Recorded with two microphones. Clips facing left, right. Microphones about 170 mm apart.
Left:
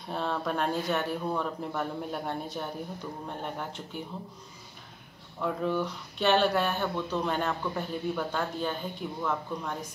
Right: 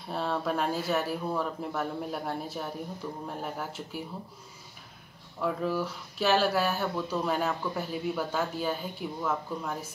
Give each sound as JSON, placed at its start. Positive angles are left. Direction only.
{"t": 0.1, "sound": "speech", "side_deg": 0}
{"t": 5.4, "sound": "speech", "side_deg": 0}